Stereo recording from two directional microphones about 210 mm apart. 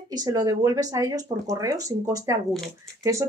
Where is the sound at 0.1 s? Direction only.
15° right (ahead or behind).